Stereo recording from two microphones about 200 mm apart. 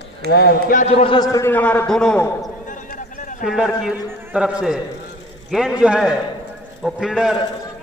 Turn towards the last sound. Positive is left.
turn(degrees=-5)  # may be behind; listen again after turning